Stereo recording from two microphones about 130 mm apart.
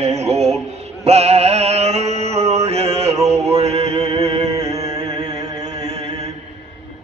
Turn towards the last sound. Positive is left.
turn(degrees=-55)  # may be behind; listen again after turning